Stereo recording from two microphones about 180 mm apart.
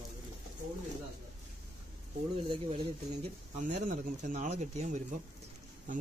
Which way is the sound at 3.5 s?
45° right (ahead or behind).